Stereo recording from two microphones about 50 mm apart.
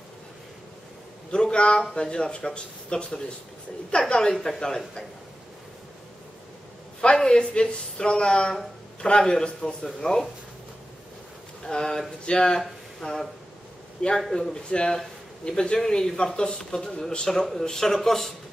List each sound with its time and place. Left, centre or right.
1.3 s a man's voice: centre
7.0 s speech: centre
11.6 s speech: centre
14.0 s a man's voice: left; by 18.3 s centre